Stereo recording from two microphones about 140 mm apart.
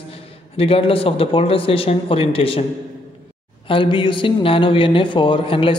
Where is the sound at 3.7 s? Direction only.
35° left (ahead or behind).